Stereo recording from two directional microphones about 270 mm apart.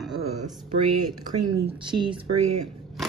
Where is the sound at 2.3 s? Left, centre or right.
Right.